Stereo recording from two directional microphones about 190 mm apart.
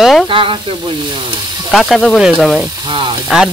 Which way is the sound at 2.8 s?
25° right (ahead or behind).